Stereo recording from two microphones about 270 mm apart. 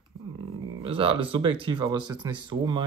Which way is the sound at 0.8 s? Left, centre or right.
Centre.